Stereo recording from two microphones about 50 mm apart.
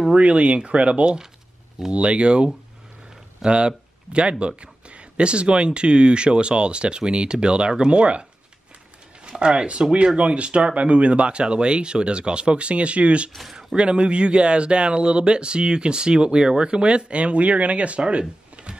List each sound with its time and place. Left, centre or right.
0.1 s speech: right
9.4 s speech: centre
13.3 s speech: centre
13.7 s speech: right